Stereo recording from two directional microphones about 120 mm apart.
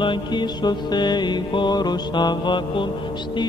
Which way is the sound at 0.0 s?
40° left (ahead or behind).